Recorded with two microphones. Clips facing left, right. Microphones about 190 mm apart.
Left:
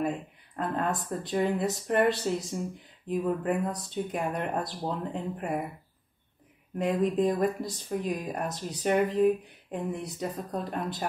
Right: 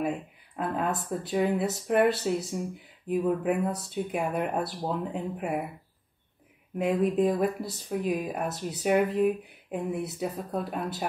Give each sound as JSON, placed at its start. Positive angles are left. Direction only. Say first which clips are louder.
{"t": 0.0, "sound": "speech", "louder": "even", "side_deg": -5}
{"t": 6.8, "sound": "speech", "louder": "right 1 dB", "side_deg": -5}